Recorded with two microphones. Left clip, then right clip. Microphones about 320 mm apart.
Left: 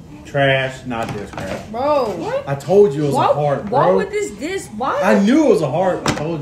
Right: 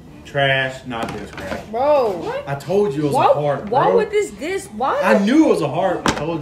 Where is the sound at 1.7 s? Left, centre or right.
Centre.